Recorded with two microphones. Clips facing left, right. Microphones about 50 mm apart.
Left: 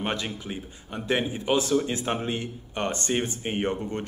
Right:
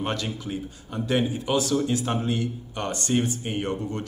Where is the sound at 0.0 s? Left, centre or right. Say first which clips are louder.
Right 1 dB; left.